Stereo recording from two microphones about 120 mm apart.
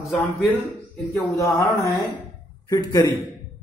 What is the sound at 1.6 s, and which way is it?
A man's voice, 25° left (ahead or behind).